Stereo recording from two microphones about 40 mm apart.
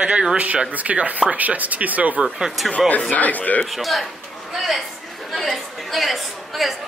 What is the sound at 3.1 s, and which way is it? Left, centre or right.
Speech, left.